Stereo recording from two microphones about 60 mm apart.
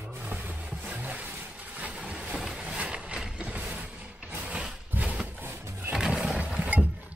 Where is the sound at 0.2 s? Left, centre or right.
Right.